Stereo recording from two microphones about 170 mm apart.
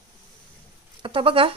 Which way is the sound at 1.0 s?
30° right (ahead or behind).